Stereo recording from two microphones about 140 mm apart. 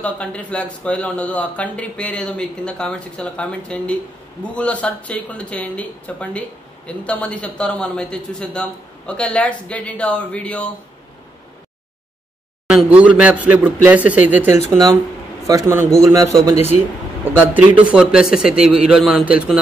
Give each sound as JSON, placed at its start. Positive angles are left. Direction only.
{"t": 0.0, "sound": "speech", "side_deg": 10}
{"t": 12.6, "sound": "a man's voice", "side_deg": -5}
{"t": 16.5, "sound": "speech", "side_deg": 50}
{"t": 17.2, "sound": "a man's voice", "side_deg": -15}